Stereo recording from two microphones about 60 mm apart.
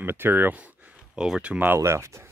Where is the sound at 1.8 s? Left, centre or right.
Right.